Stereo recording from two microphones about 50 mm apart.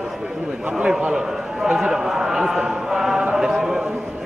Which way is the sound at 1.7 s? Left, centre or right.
Centre.